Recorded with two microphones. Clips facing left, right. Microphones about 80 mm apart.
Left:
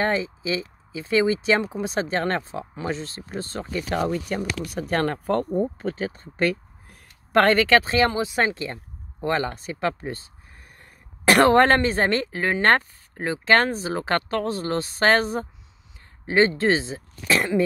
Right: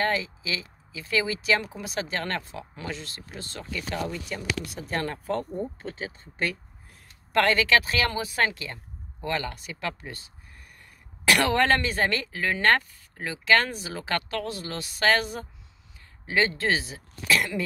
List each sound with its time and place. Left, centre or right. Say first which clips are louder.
0.0 s a woman's voice: left 3 dB; left
5.5 s a woman's voice: left 8 dB; left